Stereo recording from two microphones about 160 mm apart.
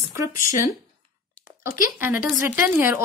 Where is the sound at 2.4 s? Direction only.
15° right (ahead or behind).